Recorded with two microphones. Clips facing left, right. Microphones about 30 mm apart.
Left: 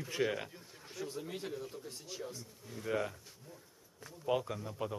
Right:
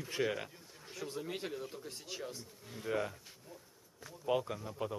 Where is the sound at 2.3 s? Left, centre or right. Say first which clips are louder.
Left 1 dB; right.